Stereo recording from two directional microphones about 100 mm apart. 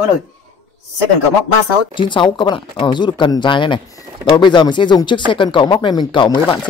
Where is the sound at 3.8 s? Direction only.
35° left (ahead or behind).